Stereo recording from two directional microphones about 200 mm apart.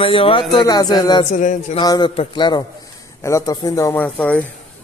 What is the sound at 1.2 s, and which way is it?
Speech, 40° left (ahead or behind).